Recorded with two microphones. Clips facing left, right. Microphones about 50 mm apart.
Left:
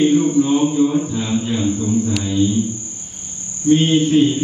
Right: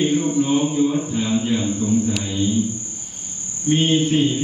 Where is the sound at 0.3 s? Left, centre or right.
Centre.